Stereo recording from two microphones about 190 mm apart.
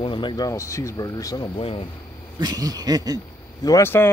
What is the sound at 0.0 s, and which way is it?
Speech, 25° left (ahead or behind).